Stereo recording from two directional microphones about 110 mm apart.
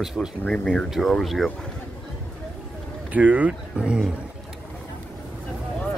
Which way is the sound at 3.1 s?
15° right (ahead or behind).